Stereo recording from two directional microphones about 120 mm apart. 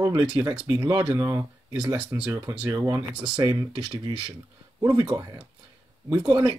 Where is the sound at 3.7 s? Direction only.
45° right (ahead or behind).